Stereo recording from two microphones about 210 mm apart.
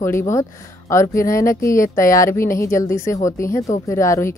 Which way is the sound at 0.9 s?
15° left (ahead or behind).